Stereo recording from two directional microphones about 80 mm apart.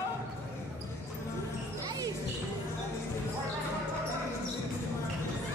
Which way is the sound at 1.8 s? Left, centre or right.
Right.